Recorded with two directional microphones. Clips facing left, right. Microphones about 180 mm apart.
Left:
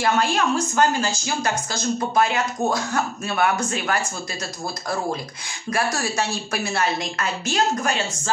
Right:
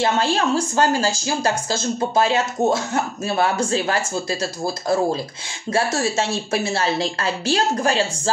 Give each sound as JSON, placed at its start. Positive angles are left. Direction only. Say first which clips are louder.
{"t": 0.0, "sound": "speech", "louder": "right 1 dB", "side_deg": -30}